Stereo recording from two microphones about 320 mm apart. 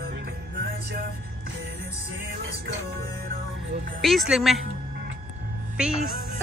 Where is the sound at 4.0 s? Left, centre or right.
Centre.